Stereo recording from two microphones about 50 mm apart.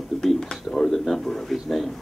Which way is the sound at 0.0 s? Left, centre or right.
Centre.